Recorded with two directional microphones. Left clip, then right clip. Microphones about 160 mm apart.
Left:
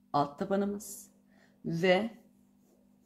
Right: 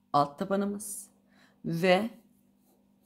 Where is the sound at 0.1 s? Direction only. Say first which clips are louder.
Right 3 dB; 25° right (ahead or behind).